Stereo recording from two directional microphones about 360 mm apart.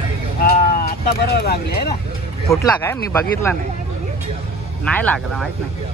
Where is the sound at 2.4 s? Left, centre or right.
Centre.